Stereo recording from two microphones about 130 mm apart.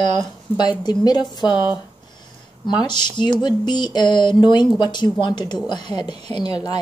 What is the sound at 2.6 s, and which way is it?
A woman's voice, 35° left (ahead or behind).